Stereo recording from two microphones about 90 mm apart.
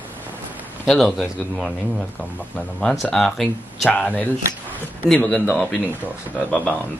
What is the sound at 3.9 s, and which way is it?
Speech, 15° left (ahead or behind).